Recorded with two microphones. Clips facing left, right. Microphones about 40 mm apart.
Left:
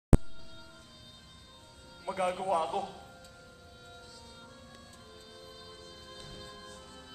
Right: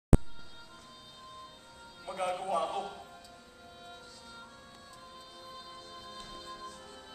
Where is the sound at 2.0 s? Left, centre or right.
Centre.